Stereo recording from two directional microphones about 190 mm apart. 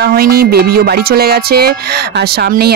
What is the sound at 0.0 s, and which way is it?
Speech, 50° right (ahead or behind).